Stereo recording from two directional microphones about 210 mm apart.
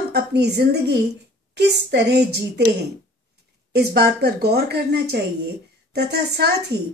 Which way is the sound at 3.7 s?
50° right (ahead or behind).